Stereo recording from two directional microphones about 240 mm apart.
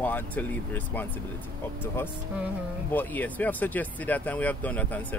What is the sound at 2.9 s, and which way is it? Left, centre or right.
Speech, centre.